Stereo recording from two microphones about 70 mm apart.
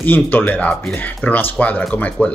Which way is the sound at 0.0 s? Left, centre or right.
Left.